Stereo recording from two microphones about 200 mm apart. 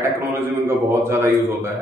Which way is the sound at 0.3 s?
15° right (ahead or behind).